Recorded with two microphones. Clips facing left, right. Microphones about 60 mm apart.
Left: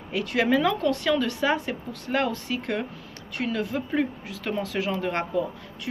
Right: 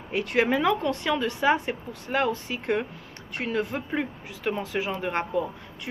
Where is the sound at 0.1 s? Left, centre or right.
Right.